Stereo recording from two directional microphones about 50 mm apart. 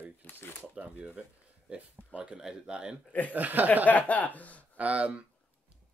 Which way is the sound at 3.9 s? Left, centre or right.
Left.